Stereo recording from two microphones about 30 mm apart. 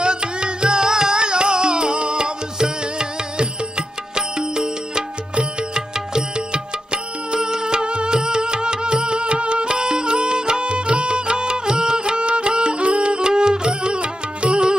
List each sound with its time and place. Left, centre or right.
0.0 s music: right